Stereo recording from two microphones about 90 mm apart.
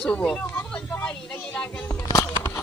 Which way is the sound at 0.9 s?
15° left (ahead or behind).